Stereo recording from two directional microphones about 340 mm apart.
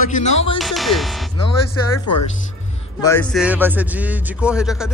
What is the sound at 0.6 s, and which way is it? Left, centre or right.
Speech, centre.